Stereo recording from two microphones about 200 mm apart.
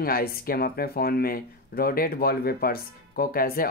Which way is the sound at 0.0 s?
50° left (ahead or behind).